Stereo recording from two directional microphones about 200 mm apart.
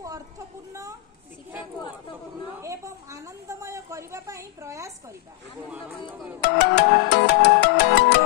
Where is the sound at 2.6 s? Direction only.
15° right (ahead or behind).